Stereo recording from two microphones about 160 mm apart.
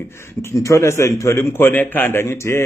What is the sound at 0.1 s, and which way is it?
A man's voice, 15° left (ahead or behind).